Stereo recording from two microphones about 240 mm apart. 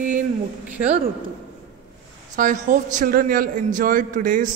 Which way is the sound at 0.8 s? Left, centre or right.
Right.